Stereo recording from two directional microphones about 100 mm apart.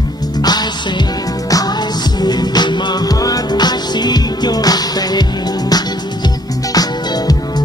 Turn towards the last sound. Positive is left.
turn(degrees=40)  # may be behind; listen again after turning